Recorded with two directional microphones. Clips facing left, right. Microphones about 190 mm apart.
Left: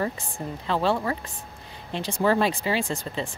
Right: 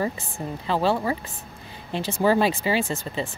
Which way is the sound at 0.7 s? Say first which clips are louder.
Right 1 dB; 5° right (ahead or behind).